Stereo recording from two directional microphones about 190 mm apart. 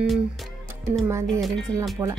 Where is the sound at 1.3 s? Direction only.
Centre (ahead or behind).